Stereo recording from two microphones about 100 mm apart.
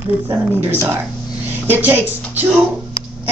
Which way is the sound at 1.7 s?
20° right (ahead or behind).